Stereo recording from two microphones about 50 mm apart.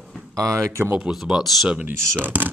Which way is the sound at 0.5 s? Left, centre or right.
Right.